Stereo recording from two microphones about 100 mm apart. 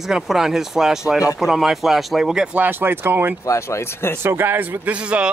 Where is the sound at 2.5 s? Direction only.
20° right (ahead or behind).